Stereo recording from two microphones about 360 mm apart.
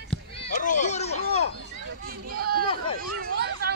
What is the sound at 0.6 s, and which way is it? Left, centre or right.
Children playing, left.